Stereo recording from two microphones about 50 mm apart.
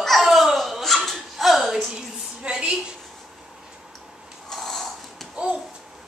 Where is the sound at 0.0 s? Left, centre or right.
Centre.